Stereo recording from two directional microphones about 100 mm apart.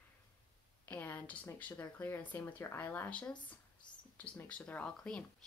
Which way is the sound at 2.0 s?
20° left (ahead or behind).